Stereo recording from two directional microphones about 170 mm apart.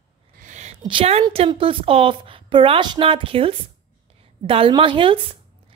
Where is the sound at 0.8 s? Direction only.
30° right (ahead or behind).